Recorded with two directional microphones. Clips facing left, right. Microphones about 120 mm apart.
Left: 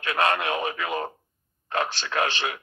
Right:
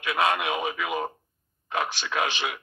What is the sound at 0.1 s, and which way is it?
Speech, 10° right (ahead or behind).